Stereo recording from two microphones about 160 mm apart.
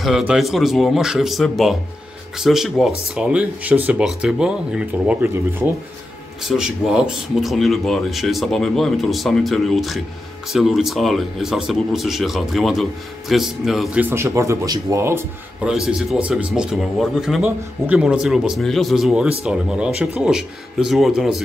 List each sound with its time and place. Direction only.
0.0 s speech: 5° right (ahead or behind)
6.4 s speech: centre (ahead or behind)
14.0 s speech: 15° right (ahead or behind)
15.6 s speech: 5° right (ahead or behind)